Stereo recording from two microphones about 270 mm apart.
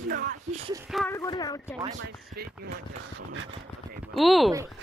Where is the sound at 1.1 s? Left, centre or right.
Centre.